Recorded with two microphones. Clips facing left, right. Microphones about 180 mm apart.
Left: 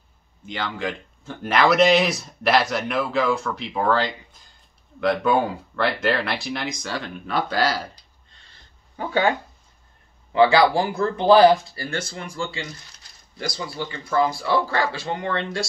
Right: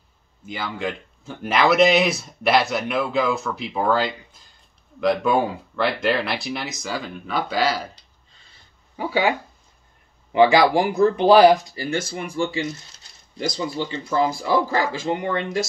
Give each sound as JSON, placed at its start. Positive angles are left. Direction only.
{"t": 0.5, "sound": "speech", "side_deg": -5}
{"t": 8.3, "sound": "a sound", "side_deg": -5}
{"t": 10.3, "sound": "speech", "side_deg": -20}